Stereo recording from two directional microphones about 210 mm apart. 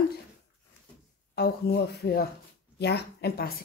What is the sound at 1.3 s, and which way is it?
A woman's voice, 50° left (ahead or behind).